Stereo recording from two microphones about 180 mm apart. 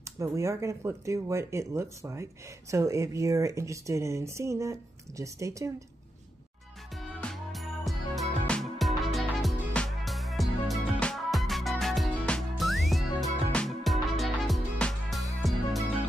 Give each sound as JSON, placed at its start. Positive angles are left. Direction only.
{"t": 0.0, "sound": "speech", "side_deg": -15}
{"t": 7.0, "sound": "music", "side_deg": 0}